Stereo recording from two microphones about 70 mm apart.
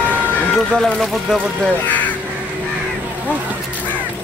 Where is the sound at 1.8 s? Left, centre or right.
Left.